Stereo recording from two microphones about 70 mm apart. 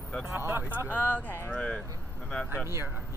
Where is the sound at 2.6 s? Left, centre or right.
Right.